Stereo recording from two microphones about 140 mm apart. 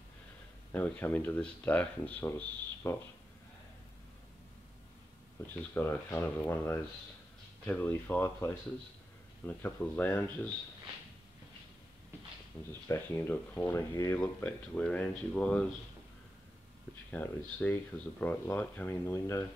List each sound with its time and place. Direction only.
0.7 s speech: 10° left (ahead or behind)
5.6 s speech: 15° left (ahead or behind)
9.6 s speech: 10° left (ahead or behind)
12.8 s speech: 15° left (ahead or behind)
17.1 s speech: 10° left (ahead or behind)